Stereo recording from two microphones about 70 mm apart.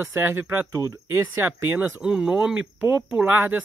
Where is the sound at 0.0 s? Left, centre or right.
Right.